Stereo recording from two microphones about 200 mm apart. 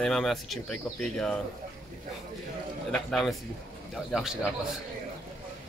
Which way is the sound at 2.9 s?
Centre (ahead or behind).